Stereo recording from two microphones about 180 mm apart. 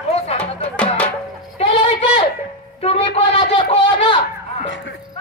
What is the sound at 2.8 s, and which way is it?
Speech, 35° left (ahead or behind).